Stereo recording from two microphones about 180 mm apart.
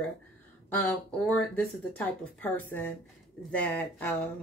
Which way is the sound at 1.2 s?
5° left (ahead or behind).